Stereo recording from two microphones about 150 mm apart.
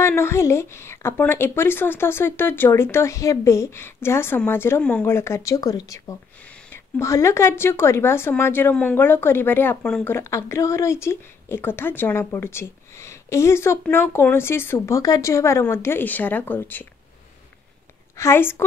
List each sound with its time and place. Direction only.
0.0 s speech: 15° left (ahead or behind)
6.4 s speech: 10° left (ahead or behind)
18.1 s speech: 15° left (ahead or behind)